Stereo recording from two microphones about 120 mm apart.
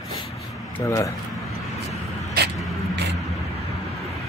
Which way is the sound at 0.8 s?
25° left (ahead or behind).